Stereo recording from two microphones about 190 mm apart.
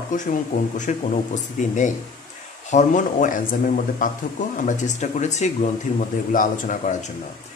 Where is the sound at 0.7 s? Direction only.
40° left (ahead or behind).